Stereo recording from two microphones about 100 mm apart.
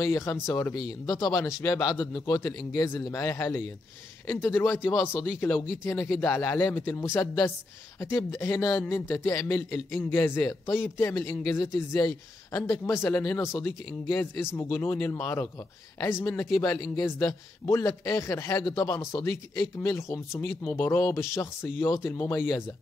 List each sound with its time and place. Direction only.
0.0 s a man's voice: 30° left (ahead or behind)